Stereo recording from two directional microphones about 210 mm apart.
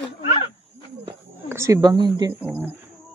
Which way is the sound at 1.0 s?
15° right (ahead or behind).